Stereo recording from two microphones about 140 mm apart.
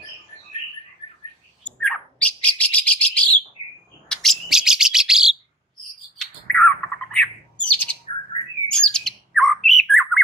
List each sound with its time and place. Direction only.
1.6 s bird: 5° left (ahead or behind)